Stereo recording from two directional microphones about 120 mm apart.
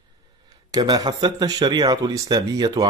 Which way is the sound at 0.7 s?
30° right (ahead or behind).